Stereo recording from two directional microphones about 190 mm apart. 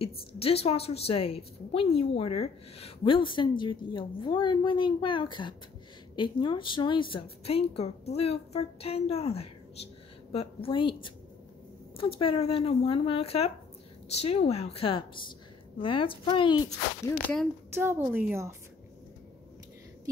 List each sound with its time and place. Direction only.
0.0 s a woman's voice: 30° left (ahead or behind)
12.2 s a woman's voice: 30° left (ahead or behind)
17.7 s speech: 10° right (ahead or behind)